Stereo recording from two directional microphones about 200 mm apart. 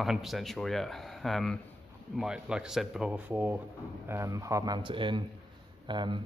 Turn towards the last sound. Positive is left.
turn(degrees=-20)  # may be behind; listen again after turning